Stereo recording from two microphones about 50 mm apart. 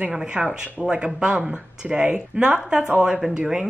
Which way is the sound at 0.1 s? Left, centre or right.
Centre.